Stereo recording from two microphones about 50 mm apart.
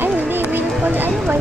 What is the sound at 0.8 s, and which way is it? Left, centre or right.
Speech, right.